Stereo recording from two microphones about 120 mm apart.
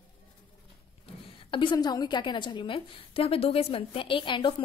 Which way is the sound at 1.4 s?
45° left (ahead or behind).